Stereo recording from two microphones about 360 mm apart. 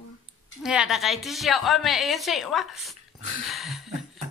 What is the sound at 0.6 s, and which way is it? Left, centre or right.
A woman's voice, centre.